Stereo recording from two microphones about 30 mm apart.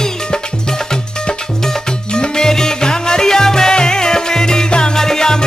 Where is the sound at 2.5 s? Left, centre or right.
Centre.